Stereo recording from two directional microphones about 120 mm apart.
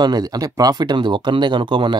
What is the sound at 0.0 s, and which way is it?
Speech, 35° right (ahead or behind).